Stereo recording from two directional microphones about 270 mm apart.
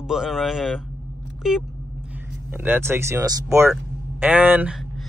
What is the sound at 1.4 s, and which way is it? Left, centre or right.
Vehicle, centre.